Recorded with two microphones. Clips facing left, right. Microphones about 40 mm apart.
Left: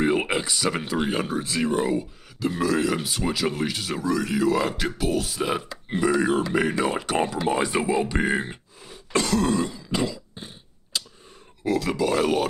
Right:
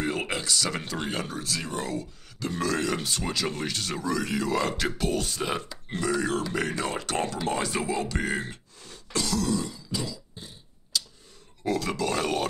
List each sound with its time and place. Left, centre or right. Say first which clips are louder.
0.0 s speech: left 6 dB; centre
2.4 s speech: left 5 dB; centre
5.7 s speech: left 6 dB; centre
9.1 s throat clearing: left 5 dB; left
11.6 s speech: left 4 dB; centre